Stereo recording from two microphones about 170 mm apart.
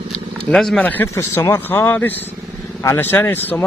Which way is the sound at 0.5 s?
5° left (ahead or behind).